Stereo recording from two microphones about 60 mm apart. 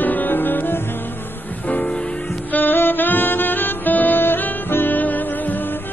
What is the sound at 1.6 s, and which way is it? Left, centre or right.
Music, left.